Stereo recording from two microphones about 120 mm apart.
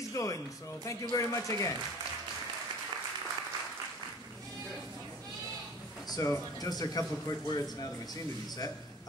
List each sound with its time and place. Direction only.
0.1 s speech: 25° left (ahead or behind)
6.0 s a man's voice: 30° left (ahead or behind)